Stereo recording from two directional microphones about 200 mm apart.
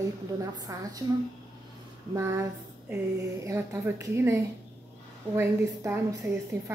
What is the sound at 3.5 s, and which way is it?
A woman's voice, 15° right (ahead or behind).